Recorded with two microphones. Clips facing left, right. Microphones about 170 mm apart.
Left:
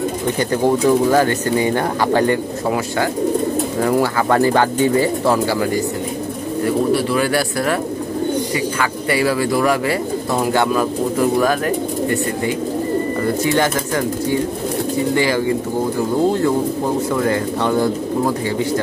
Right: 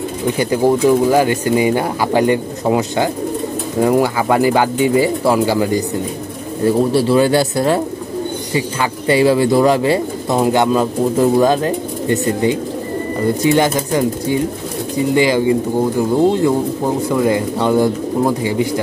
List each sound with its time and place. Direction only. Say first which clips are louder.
0.4 s speech: right 3 dB; 10° right (ahead or behind)
6.6 s speech: right 3 dB; 30° right (ahead or behind)
9.1 s speech: right 6 dB; 25° right (ahead or behind)